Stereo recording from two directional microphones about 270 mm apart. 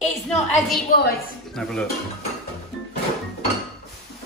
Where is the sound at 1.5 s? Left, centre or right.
Centre.